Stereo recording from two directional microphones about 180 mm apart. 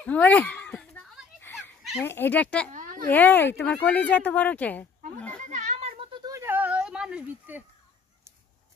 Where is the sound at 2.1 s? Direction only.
10° left (ahead or behind).